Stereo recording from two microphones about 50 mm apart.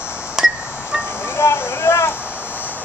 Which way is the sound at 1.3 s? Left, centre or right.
Left.